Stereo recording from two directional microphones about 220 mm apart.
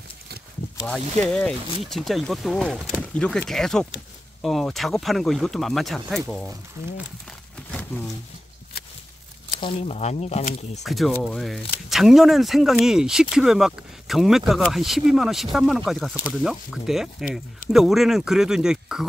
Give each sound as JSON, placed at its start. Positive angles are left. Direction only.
{"t": 1.2, "sound": "speech", "side_deg": 5}
{"t": 9.6, "sound": "speech", "side_deg": 30}
{"t": 10.8, "sound": "speech", "side_deg": 0}